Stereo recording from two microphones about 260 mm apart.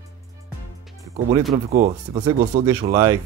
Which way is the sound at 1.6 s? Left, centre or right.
Right.